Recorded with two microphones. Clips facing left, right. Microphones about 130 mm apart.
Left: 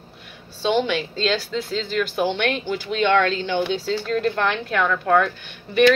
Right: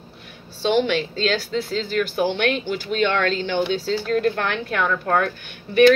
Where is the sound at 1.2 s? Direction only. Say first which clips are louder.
Right 1 dB; 40° right (ahead or behind).